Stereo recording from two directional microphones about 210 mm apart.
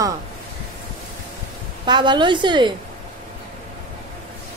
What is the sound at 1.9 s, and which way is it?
Speech, 20° right (ahead or behind).